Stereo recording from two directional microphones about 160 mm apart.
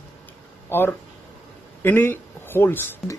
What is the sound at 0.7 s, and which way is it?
A man's voice, 15° left (ahead or behind).